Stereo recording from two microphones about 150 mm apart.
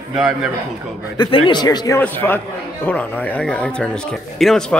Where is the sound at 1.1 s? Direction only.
30° left (ahead or behind).